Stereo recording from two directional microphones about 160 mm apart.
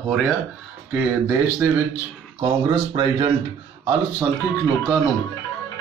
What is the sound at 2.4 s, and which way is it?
Speech, 30° right (ahead or behind).